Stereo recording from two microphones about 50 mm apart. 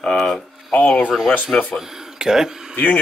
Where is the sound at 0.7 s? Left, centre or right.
Left.